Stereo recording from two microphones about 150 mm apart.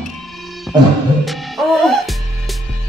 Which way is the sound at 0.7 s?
Centre (ahead or behind).